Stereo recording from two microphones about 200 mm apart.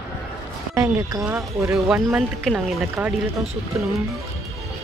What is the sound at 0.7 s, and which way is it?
A woman's voice, 15° right (ahead or behind).